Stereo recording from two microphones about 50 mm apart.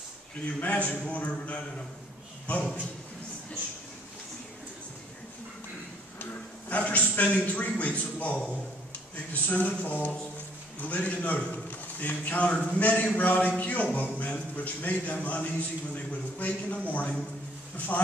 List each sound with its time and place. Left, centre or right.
0.6 s a man's voice: left
6.7 s a man's voice: left